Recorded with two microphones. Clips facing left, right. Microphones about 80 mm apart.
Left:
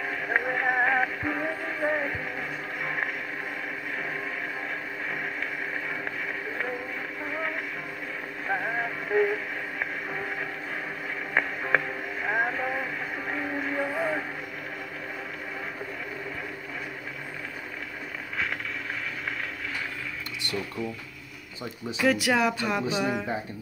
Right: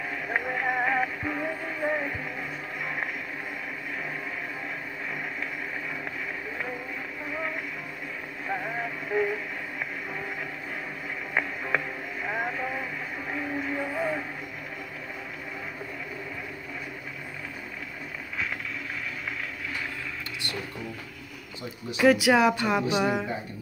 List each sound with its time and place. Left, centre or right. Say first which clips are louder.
0.3 s music: left 2 dB; centre
2.8 s a sound: left 2 dB; centre
8.5 s radio: left 3 dB; left
11.3 s radio: left 3 dB; centre
13.3 s train: even; centre
13.7 s vehicle: left 2 dB; centre
21.9 s speech: right 4 dB; centre